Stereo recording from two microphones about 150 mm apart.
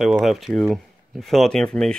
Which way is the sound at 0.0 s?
Centre (ahead or behind).